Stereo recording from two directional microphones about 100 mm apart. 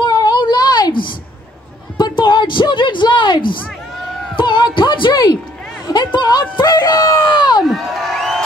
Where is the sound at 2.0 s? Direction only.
50° left (ahead or behind).